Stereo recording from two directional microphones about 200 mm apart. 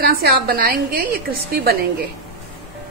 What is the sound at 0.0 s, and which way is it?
A woman's voice, 50° right (ahead or behind).